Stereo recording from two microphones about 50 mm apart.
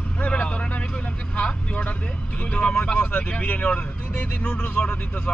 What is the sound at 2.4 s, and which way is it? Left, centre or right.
Speech, left.